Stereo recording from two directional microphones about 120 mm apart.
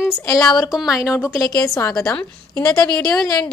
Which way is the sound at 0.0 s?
25° left (ahead or behind).